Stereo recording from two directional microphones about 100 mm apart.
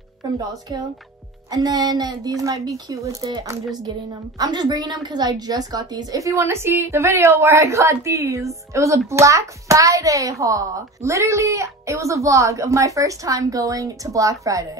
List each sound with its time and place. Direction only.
0.5 s a woman's voice: 35° right (ahead or behind)
4.4 s a woman's voice: 40° right (ahead or behind)